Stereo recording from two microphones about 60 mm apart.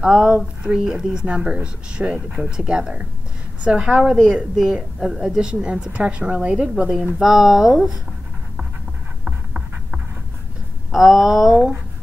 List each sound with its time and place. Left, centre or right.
0.0 s a woman's voice: centre
7.2 s a woman's voice: centre
9.2 s writing: centre
10.9 s speech: centre